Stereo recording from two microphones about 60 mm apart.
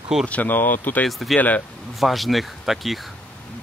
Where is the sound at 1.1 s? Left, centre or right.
Centre.